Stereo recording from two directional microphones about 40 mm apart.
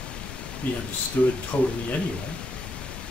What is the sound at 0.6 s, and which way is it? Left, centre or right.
Speech, left.